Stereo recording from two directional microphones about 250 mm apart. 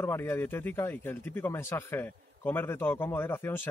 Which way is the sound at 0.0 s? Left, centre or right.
Centre.